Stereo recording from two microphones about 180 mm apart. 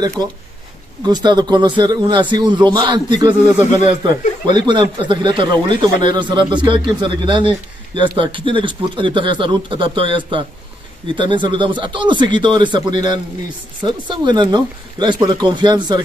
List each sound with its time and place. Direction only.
0.2 s a man's voice: 25° right (ahead or behind)